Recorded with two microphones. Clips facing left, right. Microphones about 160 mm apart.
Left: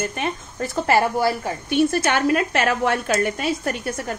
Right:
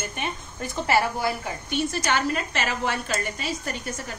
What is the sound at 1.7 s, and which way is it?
A woman's voice, 55° left (ahead or behind).